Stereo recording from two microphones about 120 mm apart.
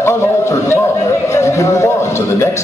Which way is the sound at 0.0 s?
20° left (ahead or behind).